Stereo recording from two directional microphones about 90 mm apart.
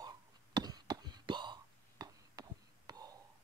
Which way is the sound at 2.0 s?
45° right (ahead or behind).